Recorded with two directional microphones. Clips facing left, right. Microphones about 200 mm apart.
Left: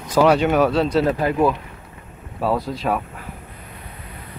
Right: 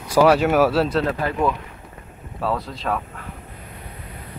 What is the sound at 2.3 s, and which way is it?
Speech, 5° left (ahead or behind).